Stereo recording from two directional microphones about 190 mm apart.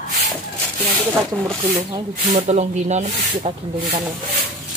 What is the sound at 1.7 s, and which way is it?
Speech, 20° right (ahead or behind).